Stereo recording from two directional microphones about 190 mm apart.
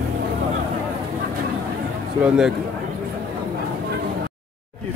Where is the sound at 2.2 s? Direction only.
5° right (ahead or behind).